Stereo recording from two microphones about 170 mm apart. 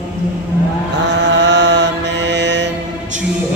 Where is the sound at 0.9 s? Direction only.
90° right.